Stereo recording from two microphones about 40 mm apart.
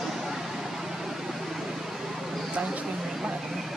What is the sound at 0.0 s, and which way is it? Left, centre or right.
Vehicle, centre.